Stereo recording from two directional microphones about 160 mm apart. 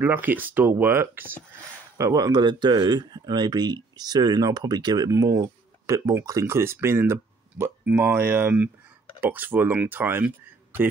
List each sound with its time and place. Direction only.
0.0 s speech: 10° right (ahead or behind)